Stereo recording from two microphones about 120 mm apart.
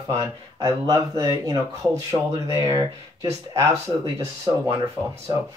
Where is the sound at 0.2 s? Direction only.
30° right (ahead or behind).